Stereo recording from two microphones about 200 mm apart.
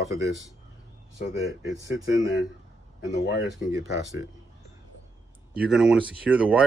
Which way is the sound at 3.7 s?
15° right (ahead or behind).